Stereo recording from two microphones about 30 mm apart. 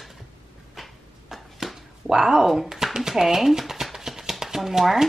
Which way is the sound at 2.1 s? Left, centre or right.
Centre.